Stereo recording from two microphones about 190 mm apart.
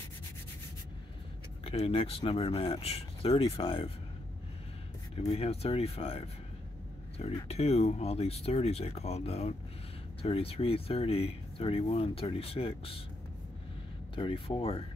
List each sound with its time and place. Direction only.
1.6 s speech: 30° left (ahead or behind)
5.1 s speech: 30° left (ahead or behind)
14.1 s speech: 25° left (ahead or behind)